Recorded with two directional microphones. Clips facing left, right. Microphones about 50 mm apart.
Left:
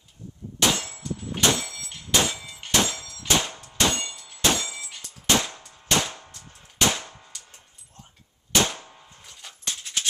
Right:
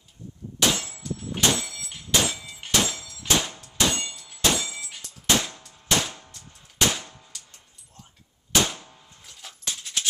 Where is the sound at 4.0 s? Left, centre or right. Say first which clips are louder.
Even; centre.